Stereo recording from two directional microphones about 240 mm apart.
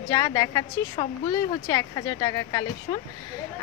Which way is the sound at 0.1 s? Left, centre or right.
Centre.